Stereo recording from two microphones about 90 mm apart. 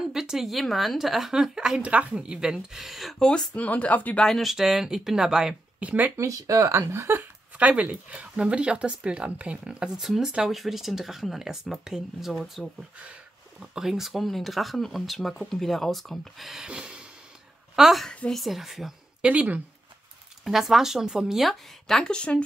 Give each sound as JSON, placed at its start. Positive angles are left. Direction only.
{"t": 0.1, "sound": "speech", "side_deg": -5}
{"t": 4.2, "sound": "speech", "side_deg": 0}
{"t": 6.1, "sound": "speech", "side_deg": -35}
{"t": 7.5, "sound": "a woman's voice", "side_deg": -15}
{"t": 18.0, "sound": "a woman's voice", "side_deg": 15}
{"t": 18.3, "sound": "speech", "side_deg": 0}
{"t": 19.2, "sound": "speech", "side_deg": -15}
{"t": 20.4, "sound": "speech", "side_deg": -5}